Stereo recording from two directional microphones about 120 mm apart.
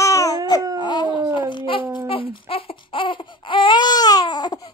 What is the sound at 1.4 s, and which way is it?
Babbling, 45° left (ahead or behind).